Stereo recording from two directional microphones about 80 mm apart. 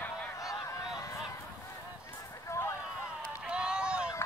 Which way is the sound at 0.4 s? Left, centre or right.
Left.